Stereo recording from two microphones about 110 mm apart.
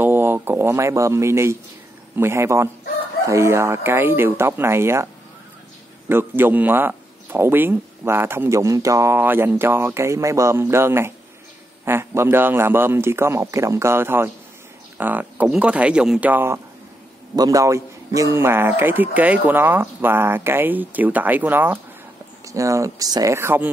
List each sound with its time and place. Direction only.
0.0 s speech: 20° right (ahead or behind)
6.0 s speech: 20° right (ahead or behind)
22.5 s speech: 30° right (ahead or behind)